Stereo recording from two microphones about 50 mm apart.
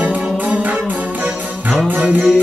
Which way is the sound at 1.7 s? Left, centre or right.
Centre.